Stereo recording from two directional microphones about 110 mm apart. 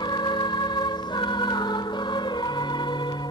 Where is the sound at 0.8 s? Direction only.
40° left (ahead or behind).